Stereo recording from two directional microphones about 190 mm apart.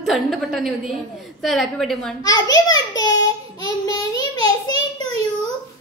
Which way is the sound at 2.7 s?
20° left (ahead or behind).